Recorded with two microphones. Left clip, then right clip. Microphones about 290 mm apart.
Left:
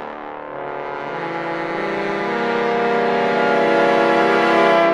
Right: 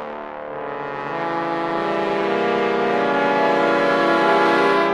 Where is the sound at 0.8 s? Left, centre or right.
Right.